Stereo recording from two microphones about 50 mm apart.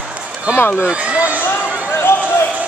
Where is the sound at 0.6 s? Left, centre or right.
Left.